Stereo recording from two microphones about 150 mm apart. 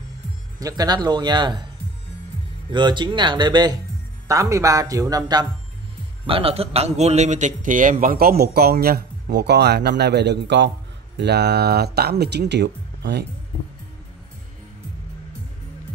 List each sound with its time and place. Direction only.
0.6 s speech: 25° right (ahead or behind)
2.7 s speech: 30° right (ahead or behind)
6.2 s a man's voice: 40° right (ahead or behind); by 12.4 s 90° right